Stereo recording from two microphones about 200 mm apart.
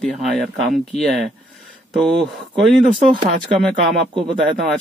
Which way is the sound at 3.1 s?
25° right (ahead or behind).